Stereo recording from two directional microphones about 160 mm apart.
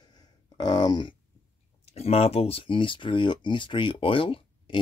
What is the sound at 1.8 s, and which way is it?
Speech, 40° left (ahead or behind).